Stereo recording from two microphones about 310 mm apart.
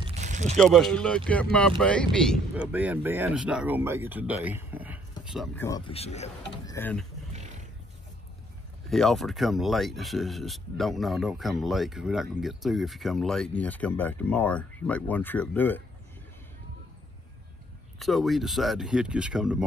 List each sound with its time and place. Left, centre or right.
0.0 s a sound: right
0.6 s speech: centre
5.7 s speech: centre
7.3 s wild animals: right
8.9 s speech: centre
17.9 s speech: centre